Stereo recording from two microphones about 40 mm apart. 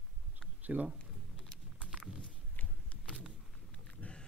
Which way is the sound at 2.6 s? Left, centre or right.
Left.